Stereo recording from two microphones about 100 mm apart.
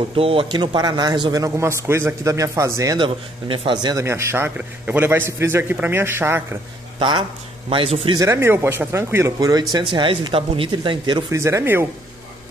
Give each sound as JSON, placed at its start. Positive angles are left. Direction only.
{"t": 0.1, "sound": "speech", "side_deg": -65}
{"t": 0.5, "sound": "speech", "side_deg": -50}
{"t": 1.4, "sound": "speech", "side_deg": -30}
{"t": 3.0, "sound": "speech", "side_deg": -60}
{"t": 4.0, "sound": "a man's voice", "side_deg": -25}
{"t": 7.0, "sound": "speech", "side_deg": -55}
{"t": 7.7, "sound": "speech", "side_deg": -65}
{"t": 8.1, "sound": "speech", "side_deg": -30}
{"t": 9.8, "sound": "speech", "side_deg": -55}
{"t": 10.7, "sound": "speech", "side_deg": -50}
{"t": 11.2, "sound": "a man's voice", "side_deg": -30}